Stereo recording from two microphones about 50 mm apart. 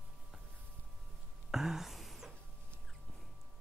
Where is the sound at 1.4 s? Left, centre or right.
Centre.